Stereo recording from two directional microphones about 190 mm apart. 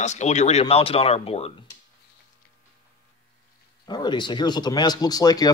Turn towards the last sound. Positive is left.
turn(degrees=20)  # may be behind; listen again after turning